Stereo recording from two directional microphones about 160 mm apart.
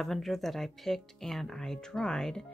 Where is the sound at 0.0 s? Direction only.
Centre (ahead or behind).